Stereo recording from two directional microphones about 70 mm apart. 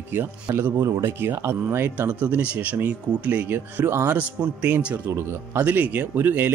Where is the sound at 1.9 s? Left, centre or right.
Right.